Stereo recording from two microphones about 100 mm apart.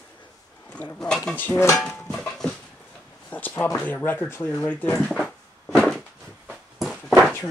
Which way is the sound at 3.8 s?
20° left (ahead or behind).